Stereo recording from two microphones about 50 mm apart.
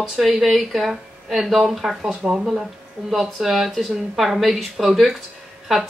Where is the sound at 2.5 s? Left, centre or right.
Centre.